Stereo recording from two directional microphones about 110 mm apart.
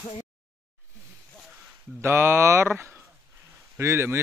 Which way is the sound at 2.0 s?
25° right (ahead or behind).